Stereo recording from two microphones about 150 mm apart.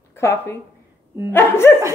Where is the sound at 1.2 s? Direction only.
15° left (ahead or behind).